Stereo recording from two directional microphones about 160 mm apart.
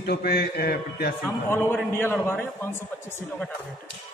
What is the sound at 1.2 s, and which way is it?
A man's voice, 15° left (ahead or behind).